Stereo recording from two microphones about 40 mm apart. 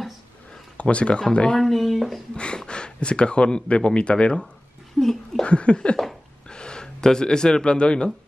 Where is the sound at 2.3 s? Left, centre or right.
Left.